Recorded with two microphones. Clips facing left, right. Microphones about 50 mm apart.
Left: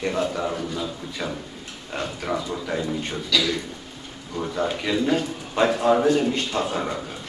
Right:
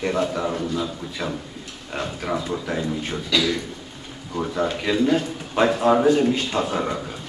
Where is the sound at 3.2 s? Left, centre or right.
Centre.